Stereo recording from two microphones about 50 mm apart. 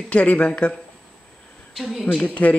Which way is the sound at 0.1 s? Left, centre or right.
Left.